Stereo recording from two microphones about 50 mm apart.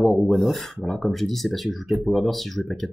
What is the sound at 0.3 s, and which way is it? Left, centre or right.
Speech, centre.